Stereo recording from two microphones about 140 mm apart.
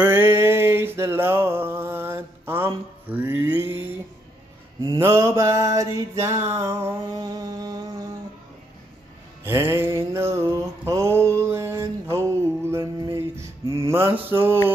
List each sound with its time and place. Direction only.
0.0 s mantra: 15° right (ahead or behind)
4.9 s mantra: 20° right (ahead or behind)
9.4 s music: 15° right (ahead or behind)